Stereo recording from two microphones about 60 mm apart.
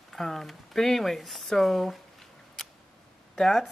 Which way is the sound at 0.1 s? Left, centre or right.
Centre.